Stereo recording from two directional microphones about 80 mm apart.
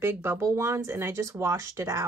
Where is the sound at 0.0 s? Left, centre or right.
Right.